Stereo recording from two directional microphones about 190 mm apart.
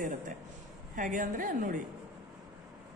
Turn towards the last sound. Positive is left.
turn(degrees=-45)  # may be behind; listen again after turning